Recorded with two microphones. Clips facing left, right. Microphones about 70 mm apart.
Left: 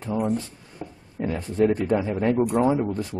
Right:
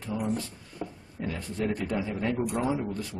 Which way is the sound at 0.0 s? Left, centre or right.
Left.